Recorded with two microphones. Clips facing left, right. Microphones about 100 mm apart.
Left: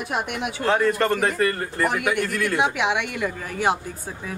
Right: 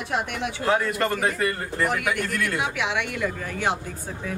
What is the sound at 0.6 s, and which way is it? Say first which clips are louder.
A man's voice: left 3 dB; 5° right (ahead or behind).